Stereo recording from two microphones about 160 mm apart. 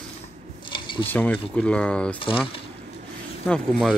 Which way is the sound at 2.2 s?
35° left (ahead or behind).